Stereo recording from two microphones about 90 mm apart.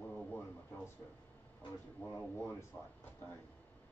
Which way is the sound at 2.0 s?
25° left (ahead or behind).